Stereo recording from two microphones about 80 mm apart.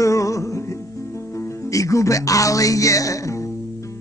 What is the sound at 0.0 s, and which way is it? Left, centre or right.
Music, left.